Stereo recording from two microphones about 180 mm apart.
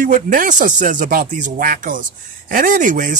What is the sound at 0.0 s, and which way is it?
Speech, 45° right (ahead or behind).